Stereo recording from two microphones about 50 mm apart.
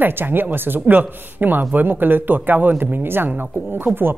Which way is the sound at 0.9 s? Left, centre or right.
Right.